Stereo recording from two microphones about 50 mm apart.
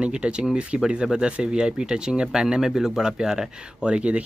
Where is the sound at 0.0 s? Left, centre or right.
Right.